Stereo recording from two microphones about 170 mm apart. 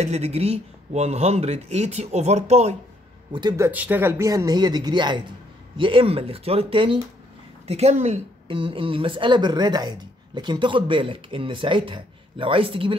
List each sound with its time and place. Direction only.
0.0 s speech: 40° right (ahead or behind)
3.3 s a woman's voice: 20° right (ahead or behind)